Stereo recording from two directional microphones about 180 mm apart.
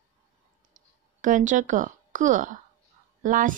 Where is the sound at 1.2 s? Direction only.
45° right (ahead or behind).